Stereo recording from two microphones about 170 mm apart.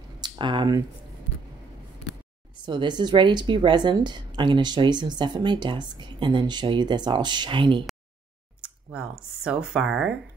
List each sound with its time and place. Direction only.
0.2 s speech: 25° right (ahead or behind)
2.6 s a woman's voice: 25° right (ahead or behind)
8.6 s a sound: 5° right (ahead or behind)
9.4 s speech: 5° right (ahead or behind)